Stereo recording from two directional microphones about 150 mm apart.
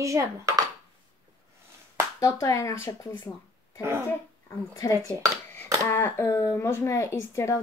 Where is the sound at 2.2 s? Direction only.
20° left (ahead or behind).